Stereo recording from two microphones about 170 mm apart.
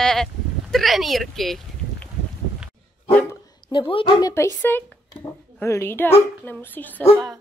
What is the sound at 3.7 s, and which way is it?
Speech, 30° left (ahead or behind).